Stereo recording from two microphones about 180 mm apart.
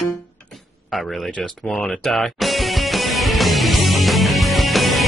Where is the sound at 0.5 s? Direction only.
Centre (ahead or behind).